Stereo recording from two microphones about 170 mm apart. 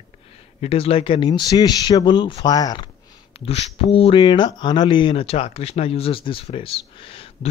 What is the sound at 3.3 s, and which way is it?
Speech, 35° left (ahead or behind).